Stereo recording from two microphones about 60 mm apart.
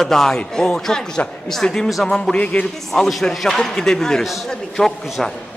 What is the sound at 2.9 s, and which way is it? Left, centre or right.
A man's voice, centre.